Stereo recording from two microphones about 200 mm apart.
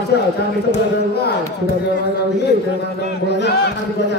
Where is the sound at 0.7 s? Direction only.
55° left (ahead or behind).